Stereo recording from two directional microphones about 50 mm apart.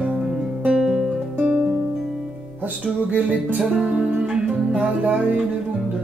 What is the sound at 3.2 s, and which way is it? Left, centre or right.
Music, right.